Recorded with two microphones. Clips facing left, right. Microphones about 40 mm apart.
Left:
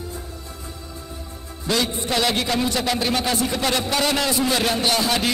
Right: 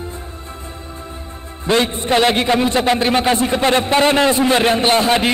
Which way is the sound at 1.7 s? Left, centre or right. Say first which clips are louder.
Right 7 dB; right.